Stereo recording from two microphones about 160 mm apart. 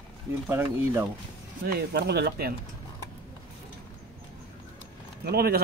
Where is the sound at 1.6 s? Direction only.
90° right.